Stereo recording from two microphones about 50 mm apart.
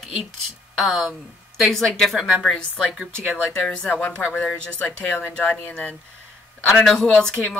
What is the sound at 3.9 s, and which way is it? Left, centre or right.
Speech, left.